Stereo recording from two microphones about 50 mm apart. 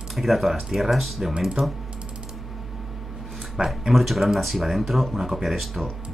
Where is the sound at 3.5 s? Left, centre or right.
Centre.